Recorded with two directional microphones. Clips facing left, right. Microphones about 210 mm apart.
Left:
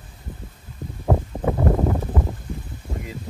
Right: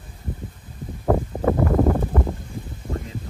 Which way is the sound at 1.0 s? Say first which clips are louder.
Right 3 dB; 10° left (ahead or behind).